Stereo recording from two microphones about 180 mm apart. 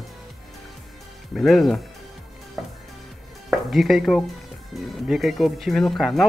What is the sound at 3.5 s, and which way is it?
Speech, centre (ahead or behind).